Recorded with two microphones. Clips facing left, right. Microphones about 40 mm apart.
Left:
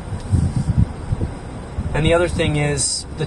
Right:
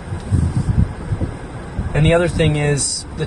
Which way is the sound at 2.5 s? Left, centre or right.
Centre.